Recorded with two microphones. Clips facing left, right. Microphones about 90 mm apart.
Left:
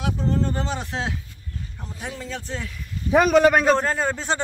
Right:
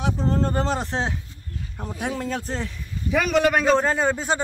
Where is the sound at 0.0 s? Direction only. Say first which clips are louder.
Right 1 dB; 35° right (ahead or behind).